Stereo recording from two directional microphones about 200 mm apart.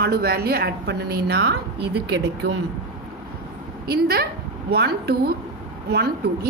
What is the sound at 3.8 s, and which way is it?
A woman's voice, 50° right (ahead or behind).